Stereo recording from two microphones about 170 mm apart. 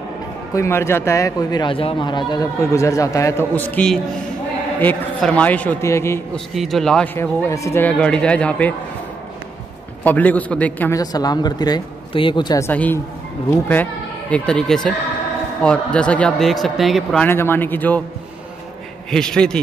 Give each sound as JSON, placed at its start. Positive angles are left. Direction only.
{"t": 0.6, "sound": "speech", "side_deg": 15}
{"t": 6.3, "sound": "a man's voice", "side_deg": 0}
{"t": 7.2, "sound": "speech", "side_deg": 15}
{"t": 10.0, "sound": "speech", "side_deg": 10}
{"t": 11.0, "sound": "speech", "side_deg": 20}
{"t": 12.6, "sound": "speech", "side_deg": 10}
{"t": 14.3, "sound": "a man's voice", "side_deg": 5}
{"t": 19.0, "sound": "a man's voice", "side_deg": 5}